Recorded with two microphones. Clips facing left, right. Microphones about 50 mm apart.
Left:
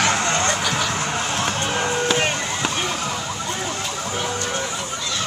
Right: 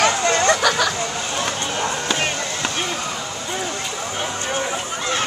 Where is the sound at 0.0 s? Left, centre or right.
Right.